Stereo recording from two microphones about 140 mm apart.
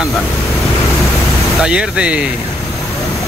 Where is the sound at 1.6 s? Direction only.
5° right (ahead or behind).